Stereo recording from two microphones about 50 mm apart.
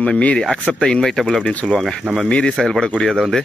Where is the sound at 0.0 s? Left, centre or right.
Left.